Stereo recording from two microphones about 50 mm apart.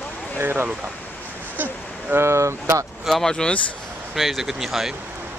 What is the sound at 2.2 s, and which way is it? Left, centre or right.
Speech, right.